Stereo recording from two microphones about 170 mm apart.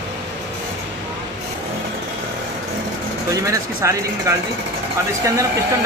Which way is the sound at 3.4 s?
15° right (ahead or behind).